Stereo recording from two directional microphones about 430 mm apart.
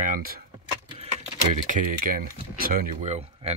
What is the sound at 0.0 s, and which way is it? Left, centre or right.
Speech, centre.